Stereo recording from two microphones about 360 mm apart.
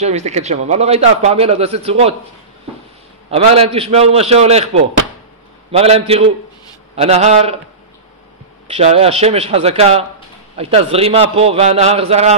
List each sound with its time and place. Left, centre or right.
0.0 s a man's voice: centre
3.3 s a man's voice: centre
8.6 s a man's voice: centre